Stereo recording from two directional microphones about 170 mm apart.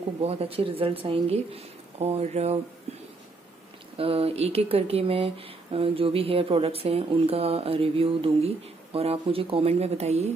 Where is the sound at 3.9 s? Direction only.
35° right (ahead or behind).